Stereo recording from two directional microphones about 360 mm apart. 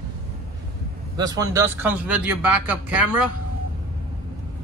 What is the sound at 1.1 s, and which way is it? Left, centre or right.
A man's voice, centre.